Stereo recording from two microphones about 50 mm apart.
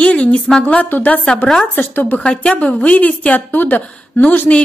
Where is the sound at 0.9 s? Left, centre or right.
Left.